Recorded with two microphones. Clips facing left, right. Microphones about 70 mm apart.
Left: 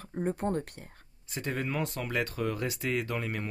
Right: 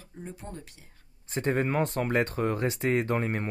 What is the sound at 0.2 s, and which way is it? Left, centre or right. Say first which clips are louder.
Speech: left 11 dB; left.